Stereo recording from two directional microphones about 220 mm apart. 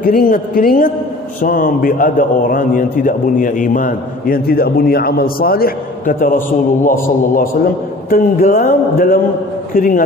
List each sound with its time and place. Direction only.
0.0 s a man's voice: 40° left (ahead or behind)